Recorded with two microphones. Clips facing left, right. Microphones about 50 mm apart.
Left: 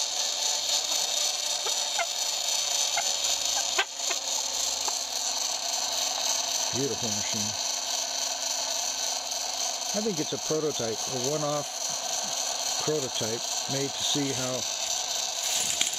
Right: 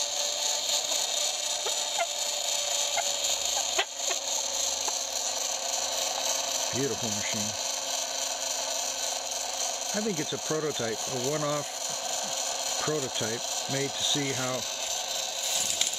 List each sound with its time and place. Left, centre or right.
9.9 s speech: centre
12.8 s speech: centre